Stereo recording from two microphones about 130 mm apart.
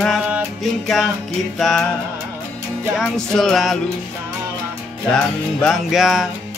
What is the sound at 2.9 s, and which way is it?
Music, 5° left (ahead or behind).